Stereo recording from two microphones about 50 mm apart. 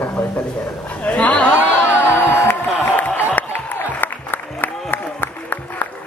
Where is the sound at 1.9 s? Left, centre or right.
Left.